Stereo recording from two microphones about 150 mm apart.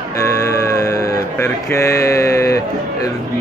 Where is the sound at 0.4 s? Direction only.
20° left (ahead or behind).